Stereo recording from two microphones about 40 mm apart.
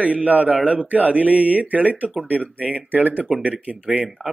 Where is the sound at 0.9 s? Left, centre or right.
Right.